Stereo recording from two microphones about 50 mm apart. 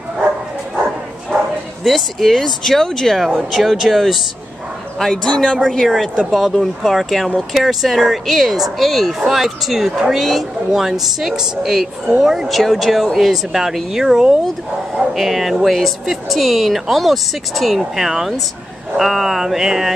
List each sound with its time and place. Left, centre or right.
1.9 s speech: centre
5.1 s speech: centre
18.9 s mantra: centre